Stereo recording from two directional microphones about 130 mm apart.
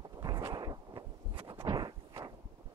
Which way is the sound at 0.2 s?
30° right (ahead or behind).